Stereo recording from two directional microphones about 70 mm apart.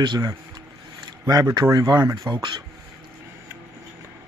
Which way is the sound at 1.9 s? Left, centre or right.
Right.